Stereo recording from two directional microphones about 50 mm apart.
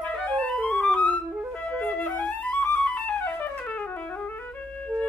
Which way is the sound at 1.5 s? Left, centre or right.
Left.